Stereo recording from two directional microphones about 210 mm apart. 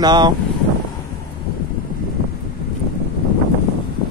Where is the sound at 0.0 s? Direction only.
20° right (ahead or behind).